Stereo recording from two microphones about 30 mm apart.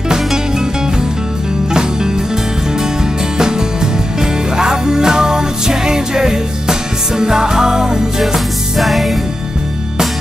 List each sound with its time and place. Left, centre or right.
3.3 s music: right
8.7 s music: centre